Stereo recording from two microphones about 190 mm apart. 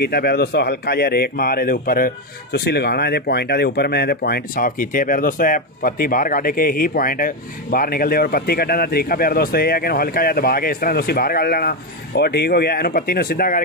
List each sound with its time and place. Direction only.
0.0 s speech: 55° left (ahead or behind)